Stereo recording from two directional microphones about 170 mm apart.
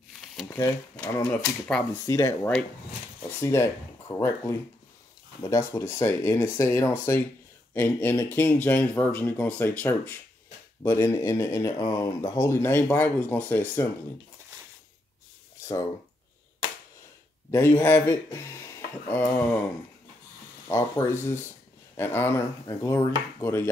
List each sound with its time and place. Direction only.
0.5 s speech: 10° left (ahead or behind)
17.5 s speech: 15° left (ahead or behind)
20.6 s speech: 15° left (ahead or behind)